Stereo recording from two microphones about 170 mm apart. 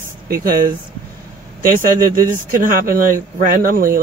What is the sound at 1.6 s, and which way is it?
Speech, 55° right (ahead or behind).